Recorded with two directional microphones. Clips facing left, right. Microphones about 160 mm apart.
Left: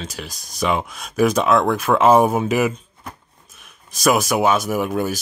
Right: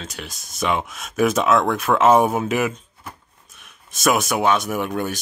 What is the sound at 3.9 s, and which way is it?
Speech, centre (ahead or behind).